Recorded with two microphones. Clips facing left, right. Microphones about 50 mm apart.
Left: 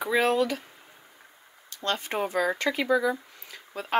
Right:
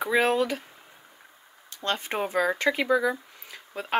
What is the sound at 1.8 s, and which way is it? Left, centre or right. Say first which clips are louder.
Speech: even; centre.